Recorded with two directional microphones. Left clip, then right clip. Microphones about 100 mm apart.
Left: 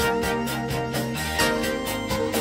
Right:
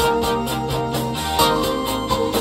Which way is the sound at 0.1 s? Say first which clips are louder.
Right 5 dB; 15° right (ahead or behind).